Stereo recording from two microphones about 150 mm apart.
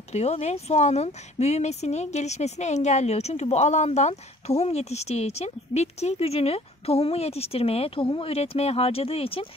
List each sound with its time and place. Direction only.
0.1 s speech: 45° left (ahead or behind)